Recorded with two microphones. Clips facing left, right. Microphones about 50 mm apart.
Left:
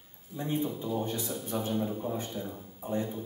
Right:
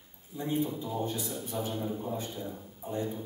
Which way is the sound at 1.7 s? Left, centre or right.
Centre.